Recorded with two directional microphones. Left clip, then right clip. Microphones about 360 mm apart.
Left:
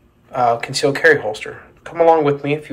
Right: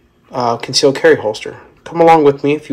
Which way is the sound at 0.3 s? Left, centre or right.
Centre.